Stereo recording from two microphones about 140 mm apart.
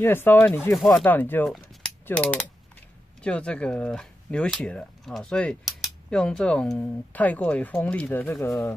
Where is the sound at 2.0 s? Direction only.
10° left (ahead or behind).